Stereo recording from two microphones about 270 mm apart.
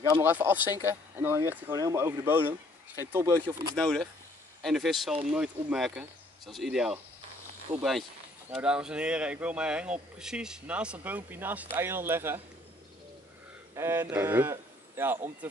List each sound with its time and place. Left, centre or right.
0.1 s speech: centre
3.7 s speech: centre
13.7 s speech: centre